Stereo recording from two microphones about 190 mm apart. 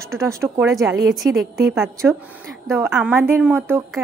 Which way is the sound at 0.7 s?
Centre (ahead or behind).